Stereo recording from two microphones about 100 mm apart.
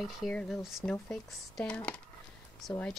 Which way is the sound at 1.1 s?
10° left (ahead or behind).